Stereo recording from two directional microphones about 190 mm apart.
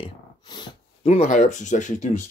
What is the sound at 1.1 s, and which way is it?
Speech, 40° left (ahead or behind).